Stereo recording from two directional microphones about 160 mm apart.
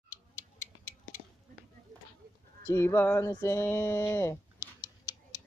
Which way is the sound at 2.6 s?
15° left (ahead or behind).